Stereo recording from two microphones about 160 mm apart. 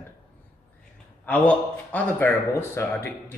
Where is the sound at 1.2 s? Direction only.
10° left (ahead or behind).